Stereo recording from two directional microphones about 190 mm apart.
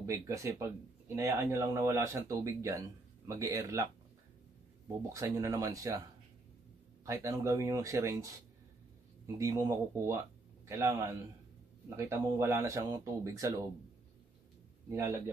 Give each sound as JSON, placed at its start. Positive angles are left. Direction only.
{"t": 0.0, "sound": "speech", "side_deg": -15}
{"t": 5.1, "sound": "speech", "side_deg": -15}
{"t": 7.1, "sound": "speech", "side_deg": -15}
{"t": 14.9, "sound": "speech", "side_deg": -15}